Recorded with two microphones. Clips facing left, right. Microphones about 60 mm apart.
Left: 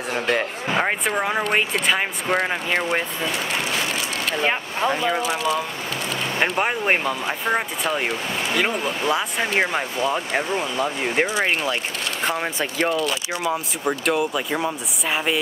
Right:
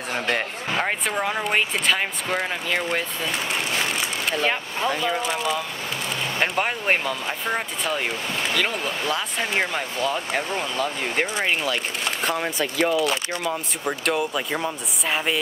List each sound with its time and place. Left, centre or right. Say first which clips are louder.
0.1 s speech: left 2 dB; centre
0.7 s speech: left 3 dB; centre
4.4 s speech: left 3 dB; centre
12.3 s speech: left 1 dB; left
13.3 s speech: left 3 dB; centre
13.8 s speech: left 2 dB; centre